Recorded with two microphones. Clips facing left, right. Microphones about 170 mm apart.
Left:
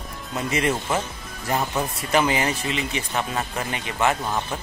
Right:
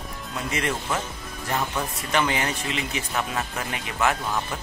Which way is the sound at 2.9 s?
5° right (ahead or behind).